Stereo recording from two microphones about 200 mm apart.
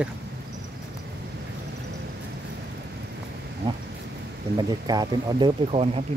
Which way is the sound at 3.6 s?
20° right (ahead or behind).